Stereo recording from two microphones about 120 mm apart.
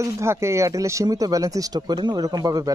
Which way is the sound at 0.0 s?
20° right (ahead or behind).